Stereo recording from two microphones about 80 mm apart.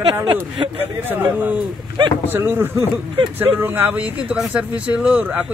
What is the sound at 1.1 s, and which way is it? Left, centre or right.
Speech, right.